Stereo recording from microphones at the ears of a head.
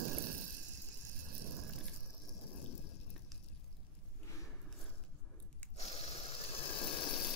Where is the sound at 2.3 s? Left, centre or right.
Left.